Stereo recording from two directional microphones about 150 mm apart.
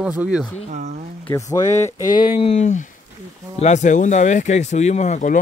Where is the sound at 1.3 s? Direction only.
20° left (ahead or behind).